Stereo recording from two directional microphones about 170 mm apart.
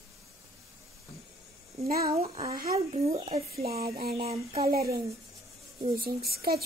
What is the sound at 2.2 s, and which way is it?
Speech, 25° right (ahead or behind).